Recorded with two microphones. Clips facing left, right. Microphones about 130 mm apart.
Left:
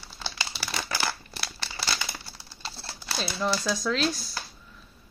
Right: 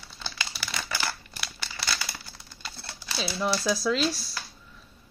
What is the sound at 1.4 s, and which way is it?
Crumpling, 30° left (ahead or behind).